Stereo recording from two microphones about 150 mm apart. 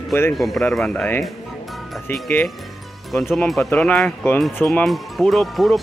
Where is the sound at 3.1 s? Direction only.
Centre (ahead or behind).